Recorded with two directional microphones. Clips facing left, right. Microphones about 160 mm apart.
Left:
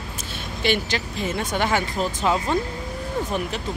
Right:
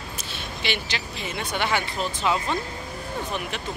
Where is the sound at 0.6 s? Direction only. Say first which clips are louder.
Left 7 dB; 45° left (ahead or behind).